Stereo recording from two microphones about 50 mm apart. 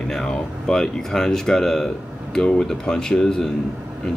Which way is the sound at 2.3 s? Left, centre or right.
Centre.